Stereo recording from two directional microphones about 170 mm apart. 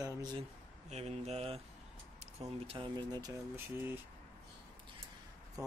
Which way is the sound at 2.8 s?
25° right (ahead or behind).